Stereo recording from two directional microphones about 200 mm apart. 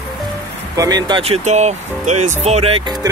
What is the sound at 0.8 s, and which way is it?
Speech, 20° right (ahead or behind).